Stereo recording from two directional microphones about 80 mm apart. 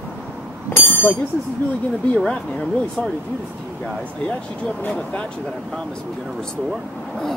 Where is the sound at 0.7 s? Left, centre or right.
Left.